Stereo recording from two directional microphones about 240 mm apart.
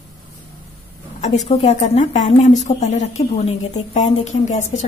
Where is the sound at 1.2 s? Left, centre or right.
Left.